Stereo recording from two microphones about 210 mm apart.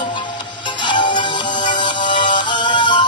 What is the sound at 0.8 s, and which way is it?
Music, 20° left (ahead or behind).